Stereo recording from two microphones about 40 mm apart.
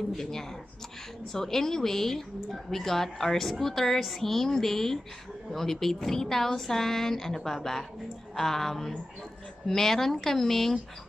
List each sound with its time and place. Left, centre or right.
0.1 s a woman's voice: centre